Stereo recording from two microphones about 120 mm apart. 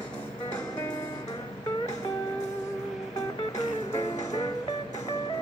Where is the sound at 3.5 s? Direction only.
30° left (ahead or behind).